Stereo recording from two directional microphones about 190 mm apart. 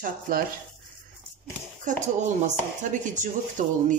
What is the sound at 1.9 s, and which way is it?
Speech, 40° right (ahead or behind).